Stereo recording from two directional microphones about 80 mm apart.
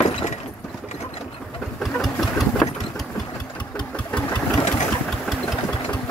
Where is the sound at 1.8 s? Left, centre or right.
Centre.